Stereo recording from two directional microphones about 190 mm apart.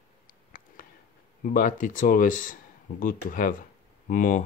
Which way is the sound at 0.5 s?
45° left (ahead or behind).